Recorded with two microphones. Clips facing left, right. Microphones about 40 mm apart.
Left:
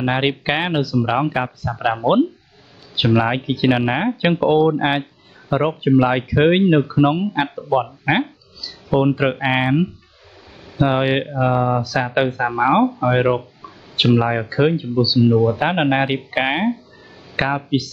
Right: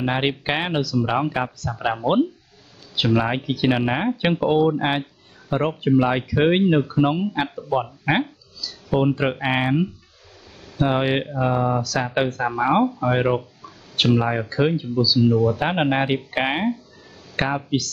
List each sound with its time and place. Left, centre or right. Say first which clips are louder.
0.0 s speech: left 3 dB; centre